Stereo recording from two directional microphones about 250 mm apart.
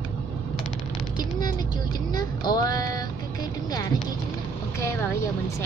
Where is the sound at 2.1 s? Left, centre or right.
Centre.